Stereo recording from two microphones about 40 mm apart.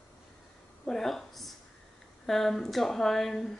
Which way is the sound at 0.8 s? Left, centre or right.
Centre.